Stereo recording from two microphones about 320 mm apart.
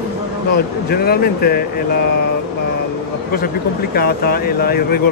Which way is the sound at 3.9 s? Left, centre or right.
Left.